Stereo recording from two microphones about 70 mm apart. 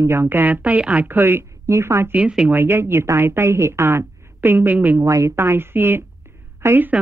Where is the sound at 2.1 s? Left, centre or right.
Centre.